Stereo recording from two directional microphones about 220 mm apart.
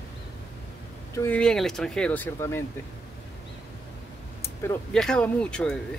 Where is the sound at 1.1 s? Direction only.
10° left (ahead or behind).